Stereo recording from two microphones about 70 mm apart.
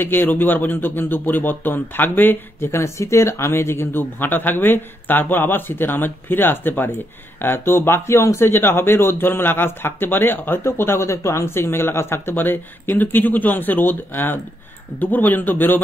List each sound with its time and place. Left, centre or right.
0.0 s speech: left